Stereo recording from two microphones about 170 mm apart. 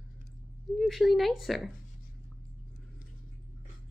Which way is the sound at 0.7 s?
Centre (ahead or behind).